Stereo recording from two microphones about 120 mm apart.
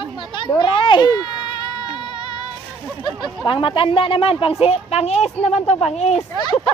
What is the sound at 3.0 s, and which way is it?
Speech, 40° left (ahead or behind).